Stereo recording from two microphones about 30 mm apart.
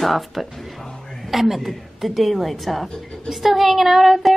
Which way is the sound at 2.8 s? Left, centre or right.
Centre.